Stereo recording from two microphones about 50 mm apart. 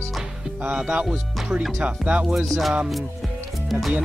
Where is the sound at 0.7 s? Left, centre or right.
Centre.